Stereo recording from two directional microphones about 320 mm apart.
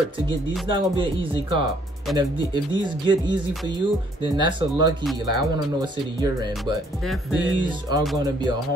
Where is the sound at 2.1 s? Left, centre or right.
Centre.